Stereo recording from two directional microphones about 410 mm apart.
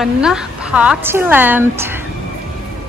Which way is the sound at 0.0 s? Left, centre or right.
Centre.